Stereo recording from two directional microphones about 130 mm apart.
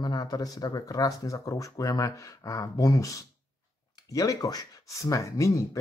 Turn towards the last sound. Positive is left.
turn(degrees=25)  # may be behind; listen again after turning